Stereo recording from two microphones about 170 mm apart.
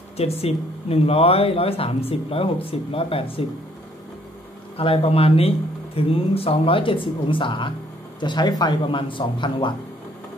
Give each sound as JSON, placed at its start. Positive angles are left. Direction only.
{"t": 0.2, "sound": "speech", "side_deg": 35}
{"t": 4.7, "sound": "speech", "side_deg": 35}